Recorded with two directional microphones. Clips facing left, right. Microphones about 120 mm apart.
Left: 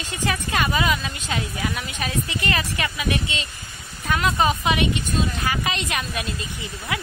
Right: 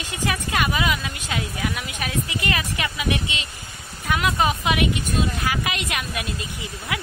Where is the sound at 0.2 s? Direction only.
10° right (ahead or behind).